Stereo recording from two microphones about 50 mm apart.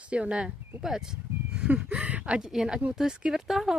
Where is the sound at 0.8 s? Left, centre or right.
Centre.